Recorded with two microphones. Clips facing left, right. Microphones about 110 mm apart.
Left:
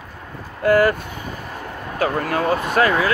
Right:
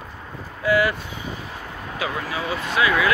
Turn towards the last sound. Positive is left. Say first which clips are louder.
# left 3 dB
turn(degrees=45)  # may be behind; listen again after turning